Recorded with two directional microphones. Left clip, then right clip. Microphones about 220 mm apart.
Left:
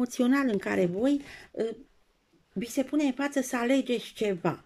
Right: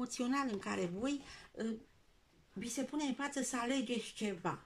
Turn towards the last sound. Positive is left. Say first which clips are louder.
# left 11 dB
turn(degrees=40)  # may be behind; listen again after turning